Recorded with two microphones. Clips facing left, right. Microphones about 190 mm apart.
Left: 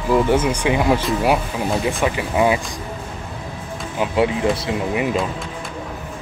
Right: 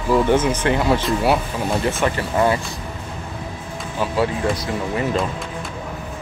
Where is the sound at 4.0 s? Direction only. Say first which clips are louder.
Left 2 dB; 20° left (ahead or behind).